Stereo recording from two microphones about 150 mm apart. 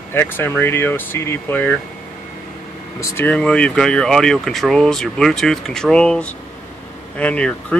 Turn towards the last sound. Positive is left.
turn(degrees=10)  # may be behind; listen again after turning